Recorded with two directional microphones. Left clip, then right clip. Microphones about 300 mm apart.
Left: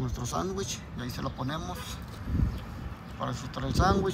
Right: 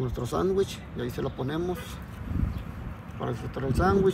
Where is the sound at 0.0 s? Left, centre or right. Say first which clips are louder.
Right 5 dB; centre.